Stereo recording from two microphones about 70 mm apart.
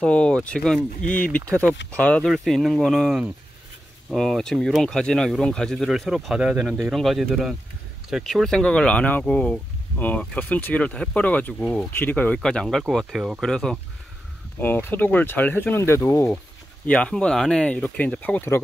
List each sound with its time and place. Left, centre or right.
0.0 s speech: centre
2.2 s speech: centre
9.9 s speech: left
11.6 s speech: centre
11.9 s speech: left
12.4 s speech: centre
12.6 s speech: centre
13.4 s speech: centre
14.6 s speech: left
16.8 s speech: centre